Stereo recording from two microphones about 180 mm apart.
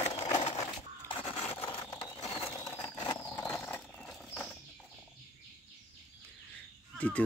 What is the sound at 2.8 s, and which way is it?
Horse, 20° left (ahead or behind).